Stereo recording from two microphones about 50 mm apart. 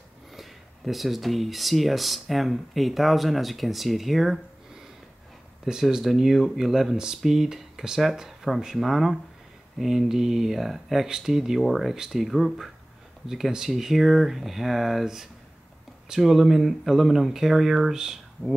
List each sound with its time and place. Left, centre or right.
0.4 s speech: centre
5.7 s speech: centre